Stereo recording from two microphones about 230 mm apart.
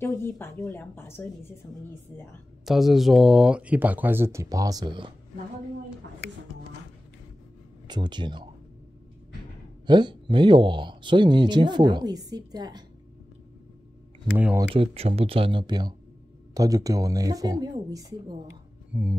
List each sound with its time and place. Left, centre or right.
0.0 s a woman's voice: centre
2.6 s speech: centre; by 5.1 s right
7.8 s speech: centre
9.8 s speech: centre
14.3 s speech: centre
14.8 s speech: right
18.9 s speech: centre